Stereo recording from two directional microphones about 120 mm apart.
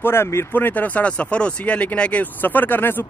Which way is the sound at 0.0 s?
20° left (ahead or behind).